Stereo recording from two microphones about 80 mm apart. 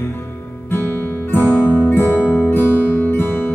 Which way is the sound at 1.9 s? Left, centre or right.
Left.